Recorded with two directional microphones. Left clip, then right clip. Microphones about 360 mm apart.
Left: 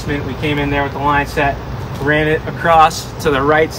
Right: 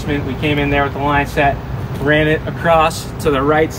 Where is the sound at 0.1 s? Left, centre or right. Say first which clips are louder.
Right 1 dB; centre.